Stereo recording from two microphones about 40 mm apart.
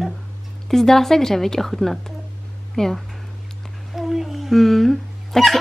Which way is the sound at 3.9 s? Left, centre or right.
Centre.